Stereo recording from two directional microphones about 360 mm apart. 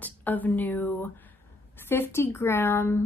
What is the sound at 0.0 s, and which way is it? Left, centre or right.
Speech, centre.